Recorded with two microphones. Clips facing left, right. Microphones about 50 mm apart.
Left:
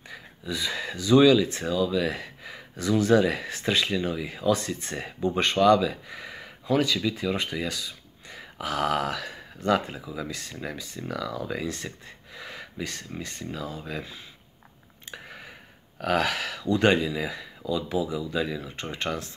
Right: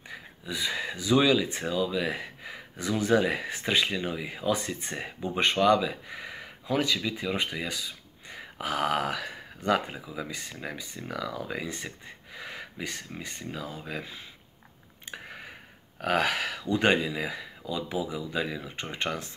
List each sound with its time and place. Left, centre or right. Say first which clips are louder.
0.1 s speech: left 3 dB; centre
15.2 s a sound: even; right
16.0 s speech: left 1 dB; right